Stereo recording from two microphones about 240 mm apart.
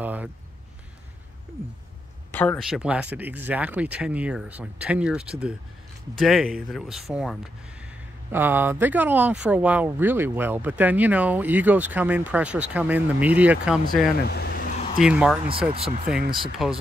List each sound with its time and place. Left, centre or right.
0.0 s a sound: centre
2.3 s speech: centre
14.2 s vehicle: left
15.0 s speech: centre
15.7 s speech: right
16.6 s speech: centre